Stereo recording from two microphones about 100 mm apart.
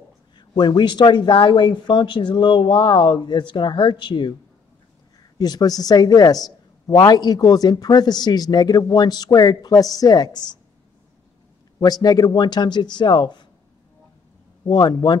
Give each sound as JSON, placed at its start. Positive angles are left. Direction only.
{"t": 0.4, "sound": "speech", "side_deg": 45}
{"t": 5.4, "sound": "speech", "side_deg": 40}
{"t": 11.8, "sound": "speech", "side_deg": 40}
{"t": 14.6, "sound": "speech", "side_deg": 45}